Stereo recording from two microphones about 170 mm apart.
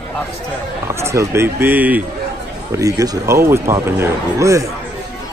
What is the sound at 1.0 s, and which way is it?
Speech, 15° right (ahead or behind).